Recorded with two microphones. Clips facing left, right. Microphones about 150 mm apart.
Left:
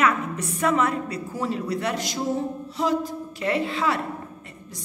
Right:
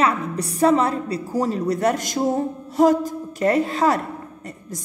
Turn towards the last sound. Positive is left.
turn(degrees=-40)  # may be behind; listen again after turning